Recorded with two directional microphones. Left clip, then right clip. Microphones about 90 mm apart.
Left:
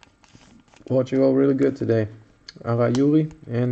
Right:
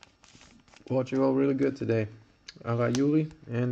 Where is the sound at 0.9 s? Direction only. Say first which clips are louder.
Left 7 dB; 15° left (ahead or behind).